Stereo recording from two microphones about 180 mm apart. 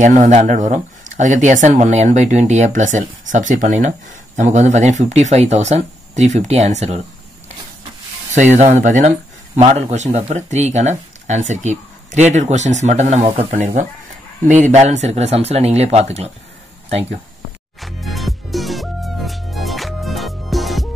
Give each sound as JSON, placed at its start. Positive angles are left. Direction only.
{"t": 0.0, "sound": "speech", "side_deg": -40}
{"t": 8.5, "sound": "speech", "side_deg": -40}
{"t": 17.7, "sound": "music", "side_deg": 0}